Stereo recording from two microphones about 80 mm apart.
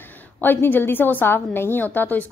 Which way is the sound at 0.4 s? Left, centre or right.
Left.